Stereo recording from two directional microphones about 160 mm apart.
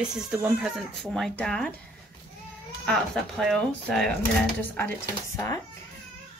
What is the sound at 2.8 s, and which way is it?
Speech, centre (ahead or behind).